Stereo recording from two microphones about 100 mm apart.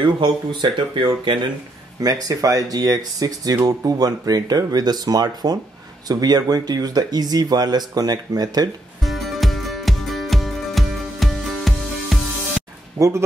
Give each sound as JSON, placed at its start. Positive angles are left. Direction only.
{"t": 0.0, "sound": "speech", "side_deg": -50}
{"t": 2.0, "sound": "speech", "side_deg": -40}
{"t": 9.0, "sound": "music", "side_deg": 0}
{"t": 13.0, "sound": "speech", "side_deg": -25}